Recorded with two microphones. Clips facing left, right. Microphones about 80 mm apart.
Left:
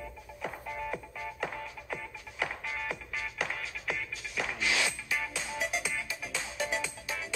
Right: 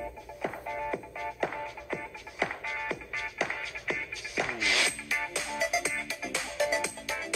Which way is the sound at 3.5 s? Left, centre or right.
Centre.